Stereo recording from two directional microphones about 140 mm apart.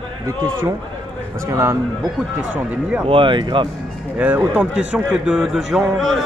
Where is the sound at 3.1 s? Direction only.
35° right (ahead or behind).